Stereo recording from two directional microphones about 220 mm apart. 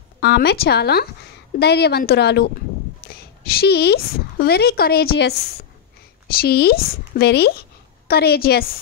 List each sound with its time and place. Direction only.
0.2 s speech: 50° left (ahead or behind)